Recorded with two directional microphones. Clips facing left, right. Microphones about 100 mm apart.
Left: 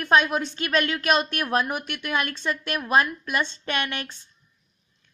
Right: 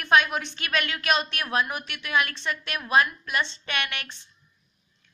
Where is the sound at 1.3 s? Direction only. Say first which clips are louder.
Left 3 dB; 50° left (ahead or behind).